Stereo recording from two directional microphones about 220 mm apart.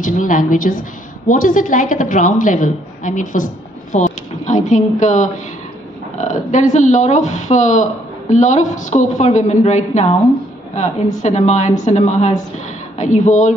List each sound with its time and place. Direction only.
0.0 s a woman's voice: 35° left (ahead or behind)
11.1 s a woman's voice: 30° left (ahead or behind)